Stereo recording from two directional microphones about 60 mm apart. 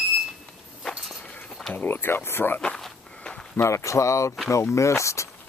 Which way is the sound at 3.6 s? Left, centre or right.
Left.